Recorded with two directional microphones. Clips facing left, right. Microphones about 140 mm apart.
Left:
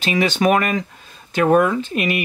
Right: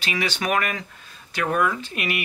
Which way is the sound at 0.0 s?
25° left (ahead or behind).